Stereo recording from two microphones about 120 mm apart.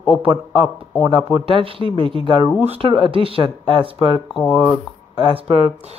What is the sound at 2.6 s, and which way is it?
Speech, 60° right (ahead or behind).